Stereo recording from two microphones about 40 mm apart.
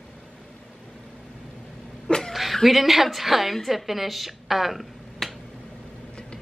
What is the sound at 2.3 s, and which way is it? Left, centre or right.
A woman's voice, centre.